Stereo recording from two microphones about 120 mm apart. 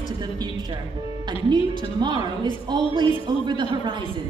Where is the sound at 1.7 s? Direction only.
40° right (ahead or behind).